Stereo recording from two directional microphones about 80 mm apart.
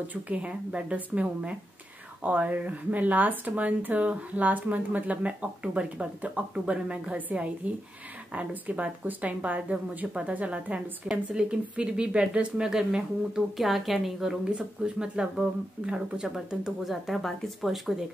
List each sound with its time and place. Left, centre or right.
0.1 s speech: centre